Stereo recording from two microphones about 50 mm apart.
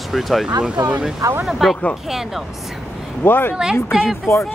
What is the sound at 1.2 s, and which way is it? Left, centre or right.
Speech, right.